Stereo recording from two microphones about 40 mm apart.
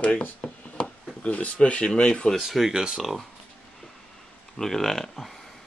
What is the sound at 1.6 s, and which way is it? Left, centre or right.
Speech, left.